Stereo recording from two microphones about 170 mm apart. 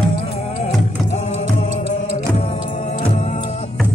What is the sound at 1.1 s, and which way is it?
Music, 40° left (ahead or behind).